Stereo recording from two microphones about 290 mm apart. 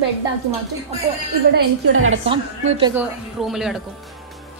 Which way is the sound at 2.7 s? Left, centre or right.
Centre.